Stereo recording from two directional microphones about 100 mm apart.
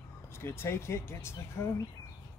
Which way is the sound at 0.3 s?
25° left (ahead or behind).